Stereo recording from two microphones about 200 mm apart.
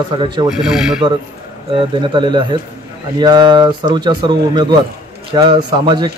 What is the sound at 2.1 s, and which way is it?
Speech, 25° right (ahead or behind).